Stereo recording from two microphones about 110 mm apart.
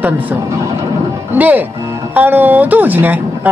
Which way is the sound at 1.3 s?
15° right (ahead or behind).